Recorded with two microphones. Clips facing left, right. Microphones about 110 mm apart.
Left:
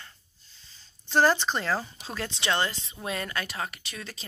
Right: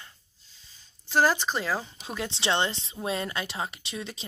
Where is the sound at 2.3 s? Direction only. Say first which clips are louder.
Right 1 dB; 25° right (ahead or behind).